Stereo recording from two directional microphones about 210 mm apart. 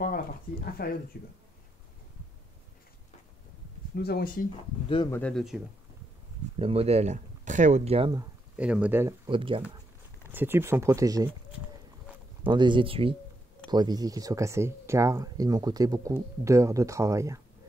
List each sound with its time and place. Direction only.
0.8 s speech: 45° left (ahead or behind)
3.9 s speech: 50° left (ahead or behind)
4.8 s speech: 25° left (ahead or behind)
5.1 s speech: 5° left (ahead or behind)
6.6 s speech: 30° right (ahead or behind)
8.5 s speech: 5° right (ahead or behind)
9.3 s speech: 25° right (ahead or behind)
10.3 s speech: 10° right (ahead or behind)
12.4 s speech: 20° right (ahead or behind)